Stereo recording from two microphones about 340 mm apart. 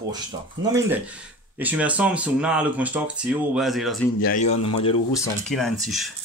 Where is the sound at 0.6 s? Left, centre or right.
Centre.